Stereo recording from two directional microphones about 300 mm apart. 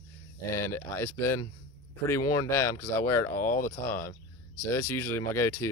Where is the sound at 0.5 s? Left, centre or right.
Centre.